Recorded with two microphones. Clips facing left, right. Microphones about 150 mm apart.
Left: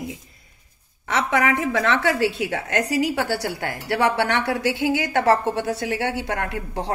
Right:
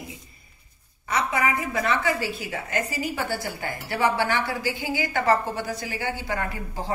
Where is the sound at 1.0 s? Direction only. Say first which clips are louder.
Left 3 dB; 90° left.